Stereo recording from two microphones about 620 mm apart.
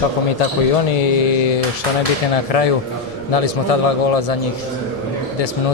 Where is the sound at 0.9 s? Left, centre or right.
Left.